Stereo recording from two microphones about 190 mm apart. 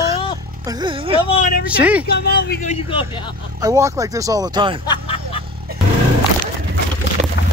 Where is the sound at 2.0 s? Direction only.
55° left (ahead or behind).